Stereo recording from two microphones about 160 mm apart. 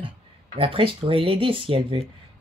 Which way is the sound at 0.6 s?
35° right (ahead or behind).